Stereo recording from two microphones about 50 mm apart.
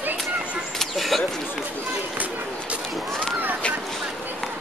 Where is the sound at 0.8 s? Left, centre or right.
Centre.